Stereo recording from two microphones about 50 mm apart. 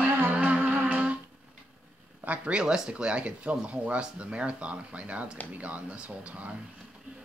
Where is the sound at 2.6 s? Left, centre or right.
Centre.